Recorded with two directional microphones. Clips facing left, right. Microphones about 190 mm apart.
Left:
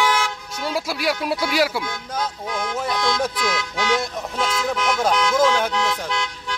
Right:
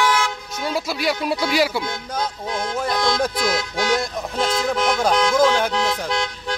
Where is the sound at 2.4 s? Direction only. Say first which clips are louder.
Right 1 dB; 30° right (ahead or behind).